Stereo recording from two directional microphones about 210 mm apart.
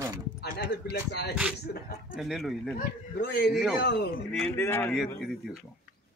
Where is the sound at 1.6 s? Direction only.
45° left (ahead or behind).